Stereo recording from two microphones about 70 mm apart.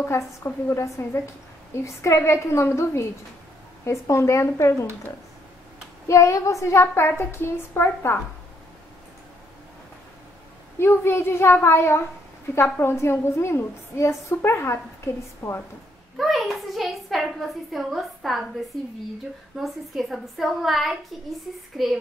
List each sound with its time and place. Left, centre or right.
0.0 s a woman's voice: left
6.0 s a woman's voice: left
10.8 s a woman's voice: left
15.4 s speech: left
16.2 s a child's voice: centre
19.5 s a child's voice: centre